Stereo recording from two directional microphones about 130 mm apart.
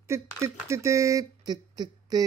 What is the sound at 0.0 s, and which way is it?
Speech, 20° right (ahead or behind).